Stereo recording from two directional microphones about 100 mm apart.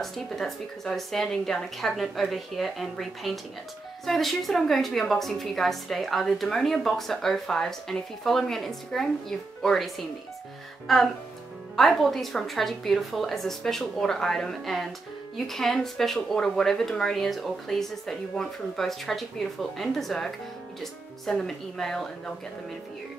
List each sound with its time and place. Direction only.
0.0 s speech: 5° left (ahead or behind)